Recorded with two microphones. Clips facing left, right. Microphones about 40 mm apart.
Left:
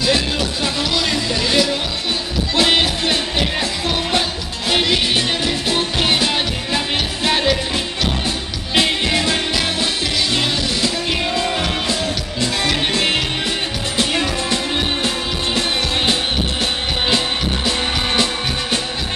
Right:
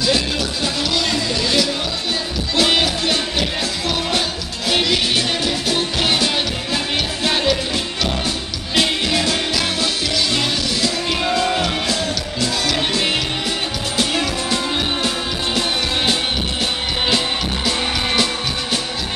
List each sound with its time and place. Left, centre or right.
1.0 s music: centre
4.6 s music: centre
8.7 s music: centre
11.9 s music: left
17.6 s music: centre